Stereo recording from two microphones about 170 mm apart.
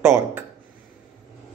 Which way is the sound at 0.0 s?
15° right (ahead or behind).